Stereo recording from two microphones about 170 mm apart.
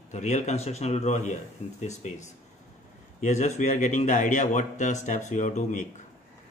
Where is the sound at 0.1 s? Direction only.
45° left (ahead or behind).